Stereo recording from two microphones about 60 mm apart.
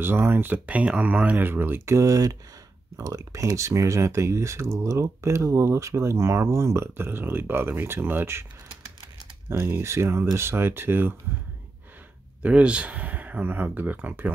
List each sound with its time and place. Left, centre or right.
0.0 s speech: right
2.0 s speech: right
9.8 s speech: right
12.4 s speech: right